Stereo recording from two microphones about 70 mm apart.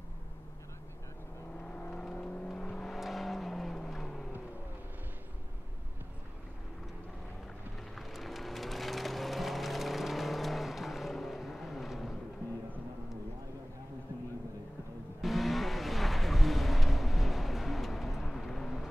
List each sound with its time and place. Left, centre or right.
1.6 s vehicle: centre
2.9 s vehicle: centre
7.9 s music: centre
15.2 s vehicle: centre